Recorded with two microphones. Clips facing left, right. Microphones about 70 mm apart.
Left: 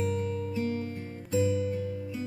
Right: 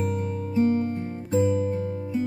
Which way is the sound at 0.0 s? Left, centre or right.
Right.